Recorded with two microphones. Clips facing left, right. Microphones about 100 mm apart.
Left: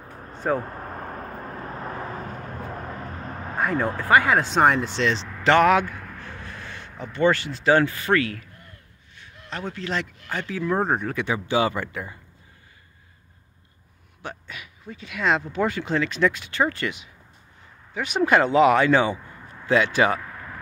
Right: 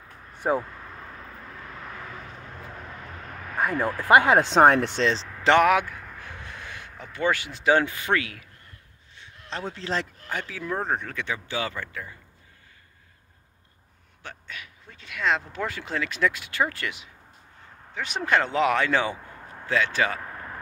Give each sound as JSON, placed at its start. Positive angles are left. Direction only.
{"t": 0.6, "sound": "vehicle", "side_deg": 45}
{"t": 3.7, "sound": "speech", "side_deg": 25}
{"t": 4.1, "sound": "speech", "side_deg": -20}
{"t": 4.7, "sound": "speech", "side_deg": -60}
{"t": 5.4, "sound": "speech", "side_deg": -20}
{"t": 5.7, "sound": "a sound", "side_deg": -5}
{"t": 7.0, "sound": "speech", "side_deg": -5}
{"t": 9.1, "sound": "a sound", "side_deg": -25}
{"t": 10.3, "sound": "speech", "side_deg": -5}
{"t": 10.9, "sound": "speech", "side_deg": 15}
{"t": 14.2, "sound": "speech", "side_deg": 10}
{"t": 19.6, "sound": "speech", "side_deg": 15}
{"t": 20.2, "sound": "a sound", "side_deg": -35}